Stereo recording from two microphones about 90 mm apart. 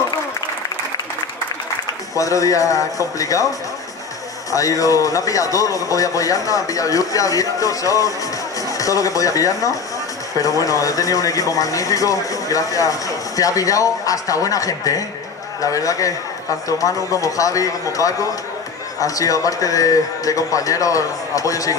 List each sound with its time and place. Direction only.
2.1 s speech: 40° left (ahead or behind)
4.5 s speech: 40° left (ahead or behind)